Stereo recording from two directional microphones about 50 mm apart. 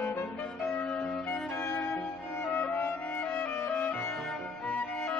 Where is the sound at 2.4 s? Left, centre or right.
Left.